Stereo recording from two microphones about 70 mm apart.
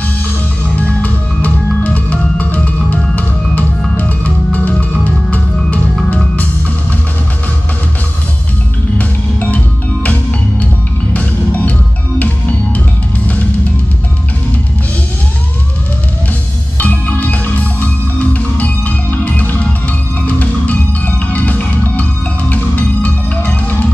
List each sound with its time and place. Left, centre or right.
0.7 s music: left
8.9 s music: left
16.7 s music: left